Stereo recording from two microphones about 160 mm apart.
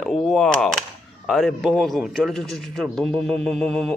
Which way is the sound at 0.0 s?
Centre (ahead or behind).